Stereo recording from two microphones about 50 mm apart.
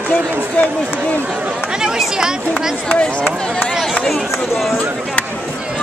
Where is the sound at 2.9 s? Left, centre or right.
Left.